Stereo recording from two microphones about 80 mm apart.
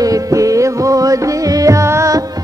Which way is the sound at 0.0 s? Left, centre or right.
Right.